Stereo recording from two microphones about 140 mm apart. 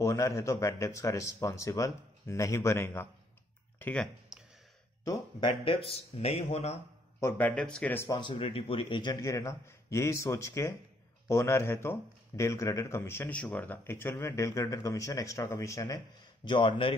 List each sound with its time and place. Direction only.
0.0 s speech: 20° left (ahead or behind)
4.3 s a sound: 5° right (ahead or behind)
5.0 s speech: 25° left (ahead or behind)
5.7 s speech: 45° left (ahead or behind)
7.2 s speech: 15° left (ahead or behind)
8.1 s speech: 35° left (ahead or behind)
16.4 s a man's voice: 35° left (ahead or behind)